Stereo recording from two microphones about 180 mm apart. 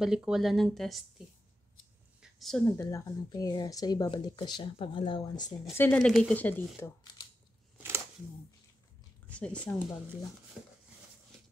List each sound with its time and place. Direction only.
0.0 s speech: 5° right (ahead or behind)
2.2 s a sound: centre (ahead or behind)
2.6 s a woman's voice: 15° left (ahead or behind)
5.8 s speech: 5° left (ahead or behind)
7.7 s a sound: 15° right (ahead or behind)
9.3 s speech: 5° left (ahead or behind)